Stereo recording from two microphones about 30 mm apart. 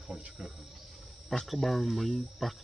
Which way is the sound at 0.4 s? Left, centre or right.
Centre.